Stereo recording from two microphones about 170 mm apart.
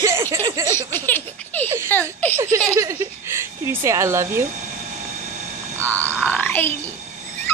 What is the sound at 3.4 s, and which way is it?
Speech, 15° right (ahead or behind).